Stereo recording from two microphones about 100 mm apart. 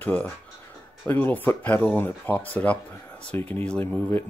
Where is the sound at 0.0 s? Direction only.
15° left (ahead or behind).